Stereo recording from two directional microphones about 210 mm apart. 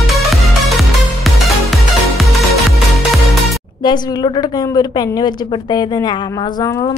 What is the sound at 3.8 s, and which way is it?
A woman's voice, 20° left (ahead or behind).